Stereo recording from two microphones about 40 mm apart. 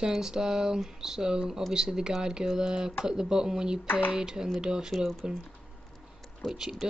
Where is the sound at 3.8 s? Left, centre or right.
Left.